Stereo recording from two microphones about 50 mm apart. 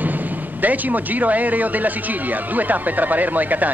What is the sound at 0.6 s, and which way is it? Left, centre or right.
Speech, right.